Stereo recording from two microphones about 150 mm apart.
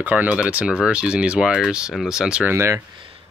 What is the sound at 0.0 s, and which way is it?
Speech, 10° right (ahead or behind).